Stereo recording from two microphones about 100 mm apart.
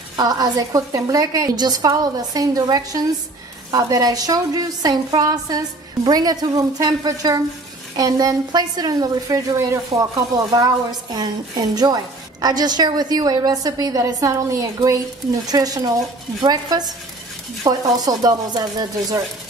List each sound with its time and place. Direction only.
0.1 s speech: 40° right (ahead or behind)